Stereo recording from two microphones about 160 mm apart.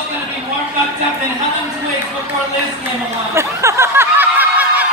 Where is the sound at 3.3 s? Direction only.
15° right (ahead or behind).